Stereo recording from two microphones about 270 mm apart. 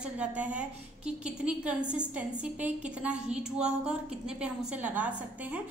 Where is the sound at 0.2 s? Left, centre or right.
Centre.